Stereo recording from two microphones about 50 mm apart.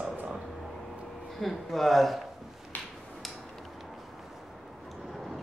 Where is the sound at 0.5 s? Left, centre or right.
Centre.